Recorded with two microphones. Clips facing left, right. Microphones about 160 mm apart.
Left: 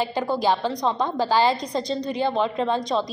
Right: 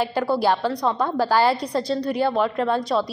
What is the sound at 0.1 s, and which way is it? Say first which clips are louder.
Speech: right 2 dB; 15° left (ahead or behind).